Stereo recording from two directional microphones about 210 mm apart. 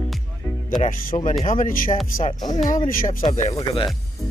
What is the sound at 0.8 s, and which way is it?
Speech, 40° left (ahead or behind).